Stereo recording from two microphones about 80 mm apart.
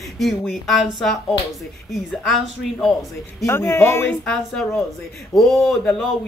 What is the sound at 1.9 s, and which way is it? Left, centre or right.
Speech, centre.